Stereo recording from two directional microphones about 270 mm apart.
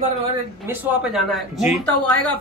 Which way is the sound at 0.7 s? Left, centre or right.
Centre.